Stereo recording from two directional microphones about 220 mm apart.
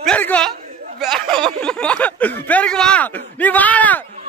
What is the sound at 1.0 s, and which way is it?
Speech, centre (ahead or behind).